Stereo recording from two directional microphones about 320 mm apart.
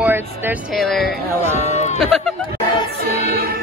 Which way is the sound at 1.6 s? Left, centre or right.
Left.